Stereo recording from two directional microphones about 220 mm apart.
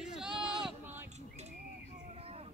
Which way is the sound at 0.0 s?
Centre (ahead or behind).